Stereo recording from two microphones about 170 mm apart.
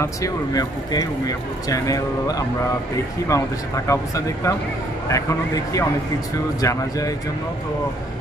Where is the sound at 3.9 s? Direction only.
20° left (ahead or behind).